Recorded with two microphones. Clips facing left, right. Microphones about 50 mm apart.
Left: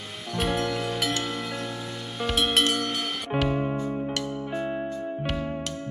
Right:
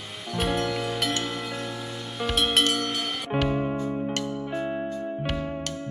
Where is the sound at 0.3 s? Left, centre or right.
Centre.